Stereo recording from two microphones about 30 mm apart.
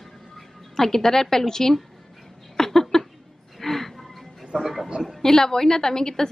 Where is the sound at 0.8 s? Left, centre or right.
Centre.